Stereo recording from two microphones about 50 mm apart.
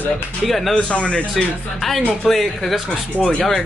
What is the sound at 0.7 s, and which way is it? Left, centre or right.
Speech, centre.